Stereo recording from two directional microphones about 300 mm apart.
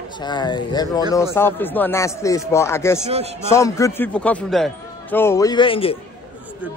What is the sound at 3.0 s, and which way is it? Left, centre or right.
Speech, right.